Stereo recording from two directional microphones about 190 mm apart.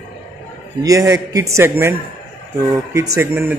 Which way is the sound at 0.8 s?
15° right (ahead or behind).